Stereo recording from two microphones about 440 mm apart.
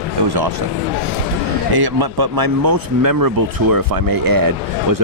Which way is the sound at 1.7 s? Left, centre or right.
Right.